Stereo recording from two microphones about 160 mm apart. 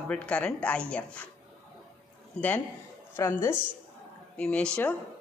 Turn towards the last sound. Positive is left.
turn(degrees=5)  # may be behind; listen again after turning